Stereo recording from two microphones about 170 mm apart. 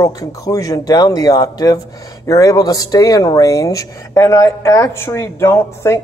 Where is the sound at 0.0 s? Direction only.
20° left (ahead or behind).